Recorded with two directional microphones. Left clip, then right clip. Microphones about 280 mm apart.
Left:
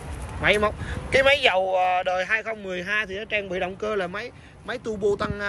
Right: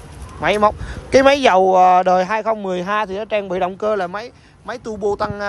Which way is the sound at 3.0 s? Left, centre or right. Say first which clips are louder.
Right 8 dB; right.